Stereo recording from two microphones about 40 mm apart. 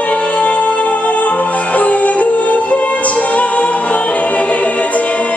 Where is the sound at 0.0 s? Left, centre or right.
Left.